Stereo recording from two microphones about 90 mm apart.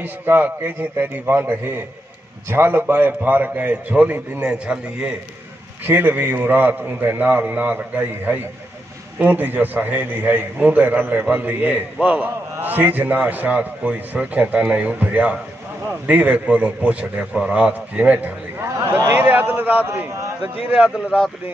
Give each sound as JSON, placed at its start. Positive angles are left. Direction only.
{"t": 0.0, "sound": "a man's voice", "side_deg": -20}